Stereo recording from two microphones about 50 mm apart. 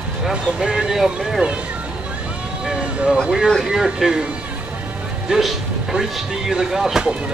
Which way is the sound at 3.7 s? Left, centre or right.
Centre.